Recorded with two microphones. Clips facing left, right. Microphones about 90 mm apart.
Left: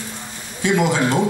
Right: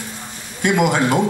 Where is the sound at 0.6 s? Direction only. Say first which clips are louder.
Right 1 dB; 55° right (ahead or behind).